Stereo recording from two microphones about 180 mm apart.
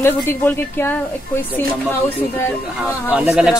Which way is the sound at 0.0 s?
15° left (ahead or behind).